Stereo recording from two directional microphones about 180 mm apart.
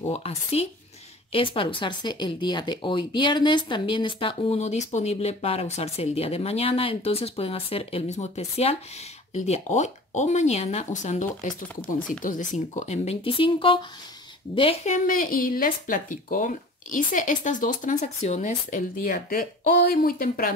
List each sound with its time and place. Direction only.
0.0 s speech: 35° left (ahead or behind)
15.0 s speech: 50° left (ahead or behind)